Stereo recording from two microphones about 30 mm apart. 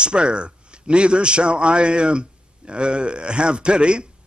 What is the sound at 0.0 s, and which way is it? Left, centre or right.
A man's voice, right.